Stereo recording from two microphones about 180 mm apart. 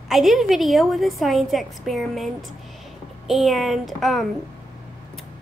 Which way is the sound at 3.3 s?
Centre (ahead or behind).